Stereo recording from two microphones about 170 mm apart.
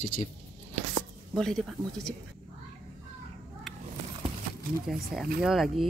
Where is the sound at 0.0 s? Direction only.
55° left (ahead or behind).